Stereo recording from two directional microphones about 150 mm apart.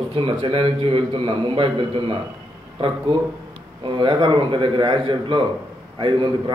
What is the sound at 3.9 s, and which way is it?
Speech, 35° right (ahead or behind).